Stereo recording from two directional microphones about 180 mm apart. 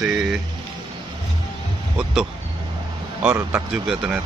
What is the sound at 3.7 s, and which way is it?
Speech, 5° right (ahead or behind).